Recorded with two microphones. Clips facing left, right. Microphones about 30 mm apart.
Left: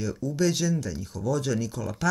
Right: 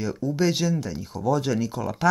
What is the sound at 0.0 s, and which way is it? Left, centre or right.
Speech, right.